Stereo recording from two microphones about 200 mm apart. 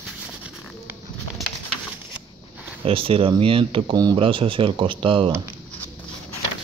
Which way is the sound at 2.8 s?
30° right (ahead or behind).